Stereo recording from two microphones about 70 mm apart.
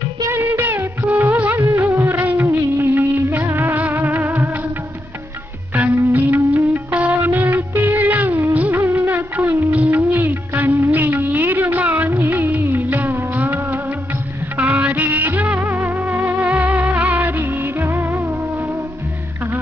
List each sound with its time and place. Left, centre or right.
0.3 s music of bollywood: right
1.6 s music: right
2.4 s music of bollywood: right
5.8 s music: right